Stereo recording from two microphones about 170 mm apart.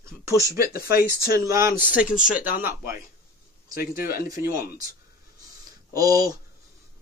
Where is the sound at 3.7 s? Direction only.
60° left (ahead or behind).